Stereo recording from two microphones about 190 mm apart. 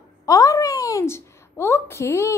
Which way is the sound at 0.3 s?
15° left (ahead or behind).